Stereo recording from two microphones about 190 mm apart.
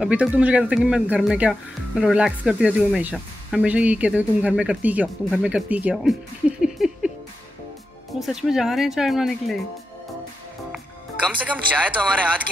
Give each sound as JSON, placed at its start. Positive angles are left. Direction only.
{"t": 0.0, "sound": "speech", "side_deg": -5}
{"t": 6.6, "sound": "a sound", "side_deg": -5}
{"t": 8.2, "sound": "speech", "side_deg": 0}
{"t": 11.2, "sound": "speech", "side_deg": -5}